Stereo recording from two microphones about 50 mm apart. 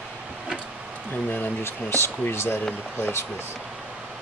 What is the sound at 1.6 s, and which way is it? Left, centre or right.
Speech, left.